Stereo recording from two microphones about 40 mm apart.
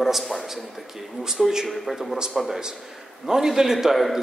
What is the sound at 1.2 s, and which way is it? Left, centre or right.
A man's voice, centre.